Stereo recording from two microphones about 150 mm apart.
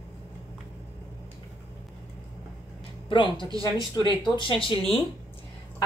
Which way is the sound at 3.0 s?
35° left (ahead or behind).